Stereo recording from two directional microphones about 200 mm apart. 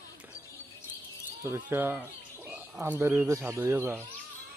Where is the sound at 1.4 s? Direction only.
10° right (ahead or behind).